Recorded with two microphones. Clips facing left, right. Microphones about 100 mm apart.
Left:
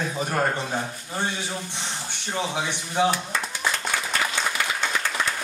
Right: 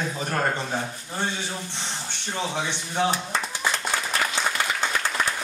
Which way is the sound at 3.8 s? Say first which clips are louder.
Even; 15° right (ahead or behind).